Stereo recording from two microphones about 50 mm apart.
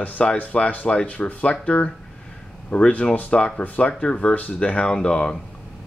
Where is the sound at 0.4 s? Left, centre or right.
Left.